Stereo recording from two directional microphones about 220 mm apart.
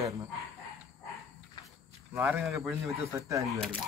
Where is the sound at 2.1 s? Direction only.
10° right (ahead or behind).